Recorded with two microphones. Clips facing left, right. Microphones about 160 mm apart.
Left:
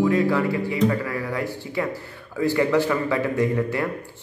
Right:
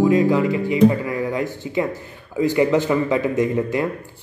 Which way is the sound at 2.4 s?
20° right (ahead or behind).